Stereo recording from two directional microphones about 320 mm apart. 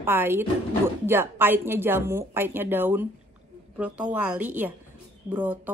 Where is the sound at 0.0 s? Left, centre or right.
Centre.